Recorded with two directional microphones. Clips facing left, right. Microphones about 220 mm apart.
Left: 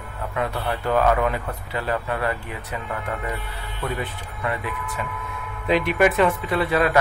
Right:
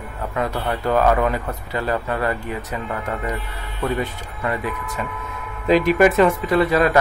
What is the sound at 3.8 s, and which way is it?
Speech, 45° right (ahead or behind).